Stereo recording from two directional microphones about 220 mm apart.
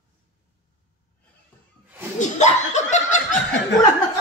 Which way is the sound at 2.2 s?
30° left (ahead or behind).